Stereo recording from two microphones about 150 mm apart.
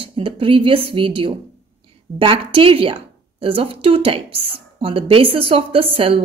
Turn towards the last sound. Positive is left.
turn(degrees=-40)  # may be behind; listen again after turning